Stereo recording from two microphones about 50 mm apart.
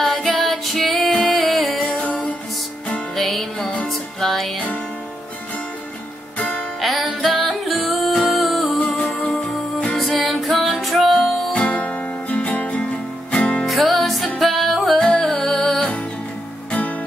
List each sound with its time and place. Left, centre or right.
0.0 s music: centre
2.0 s music: left
3.2 s music: centre
6.8 s music: centre
11.5 s music: left
13.7 s music: centre
15.0 s music: centre